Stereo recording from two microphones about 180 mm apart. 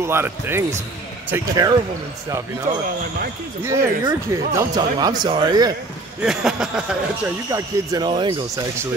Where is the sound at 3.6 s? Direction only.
20° right (ahead or behind).